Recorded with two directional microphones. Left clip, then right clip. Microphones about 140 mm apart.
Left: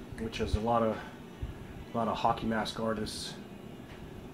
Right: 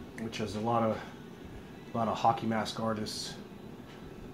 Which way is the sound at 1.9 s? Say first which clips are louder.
Right 1 dB; 25° right (ahead or behind).